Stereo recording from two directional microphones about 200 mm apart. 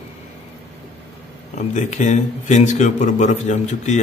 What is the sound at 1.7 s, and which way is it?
Speech, 35° left (ahead or behind).